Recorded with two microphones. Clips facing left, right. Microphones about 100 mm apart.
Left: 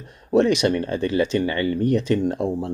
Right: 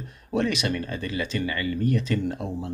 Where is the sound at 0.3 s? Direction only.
55° left (ahead or behind).